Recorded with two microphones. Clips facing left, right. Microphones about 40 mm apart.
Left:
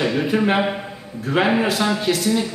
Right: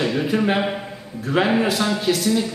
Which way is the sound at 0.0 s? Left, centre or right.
Centre.